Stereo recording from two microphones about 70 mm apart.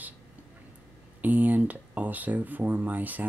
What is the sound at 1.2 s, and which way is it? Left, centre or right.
Speech, right.